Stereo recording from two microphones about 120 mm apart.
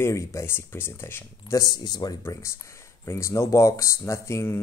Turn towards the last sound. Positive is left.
turn(degrees=25)  # may be behind; listen again after turning